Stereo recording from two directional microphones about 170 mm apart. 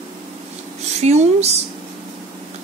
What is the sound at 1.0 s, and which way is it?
Speech, 40° right (ahead or behind).